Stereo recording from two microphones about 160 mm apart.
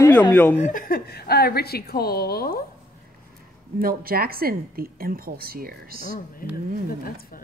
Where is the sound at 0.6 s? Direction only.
55° left (ahead or behind); by 2.6 s 70° left (ahead or behind).